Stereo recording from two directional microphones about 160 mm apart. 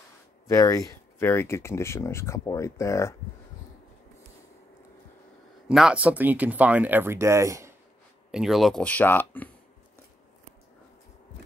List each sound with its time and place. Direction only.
0.5 s speech: 20° left (ahead or behind)
5.7 s speech: 5° right (ahead or behind)
8.3 s speech: 5° right (ahead or behind)